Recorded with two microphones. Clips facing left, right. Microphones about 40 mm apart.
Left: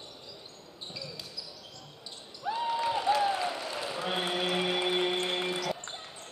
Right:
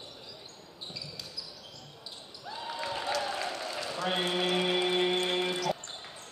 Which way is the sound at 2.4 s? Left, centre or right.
Centre.